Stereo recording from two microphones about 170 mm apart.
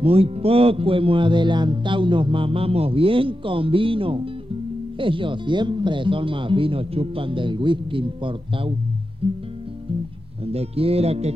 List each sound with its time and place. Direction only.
0.0 s music: 35° right (ahead or behind)
4.9 s speech: 30° right (ahead or behind)
10.4 s music: 35° right (ahead or behind)